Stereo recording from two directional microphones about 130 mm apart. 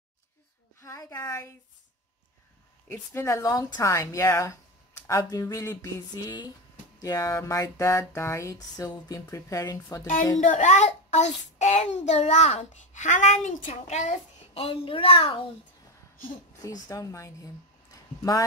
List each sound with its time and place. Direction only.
0.7 s a sound: 25° left (ahead or behind)
3.1 s speech: 25° left (ahead or behind)
10.4 s a child's voice: 75° left (ahead or behind); by 15.4 s 45° left (ahead or behind)
16.6 s speech: 25° left (ahead or behind)